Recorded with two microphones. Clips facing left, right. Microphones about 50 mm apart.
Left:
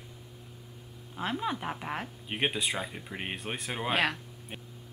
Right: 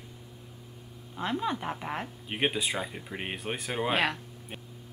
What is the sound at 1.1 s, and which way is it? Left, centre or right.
Speech, centre.